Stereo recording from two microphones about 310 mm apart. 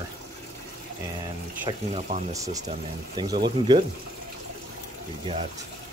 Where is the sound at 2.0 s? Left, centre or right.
Right.